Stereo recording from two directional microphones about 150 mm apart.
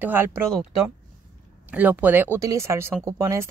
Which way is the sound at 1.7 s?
10° right (ahead or behind).